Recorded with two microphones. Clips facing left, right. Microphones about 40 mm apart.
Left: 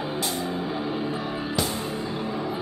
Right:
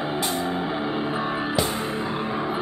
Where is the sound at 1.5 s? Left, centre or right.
Centre.